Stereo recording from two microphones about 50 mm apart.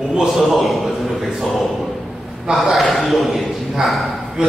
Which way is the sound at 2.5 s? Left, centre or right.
Centre.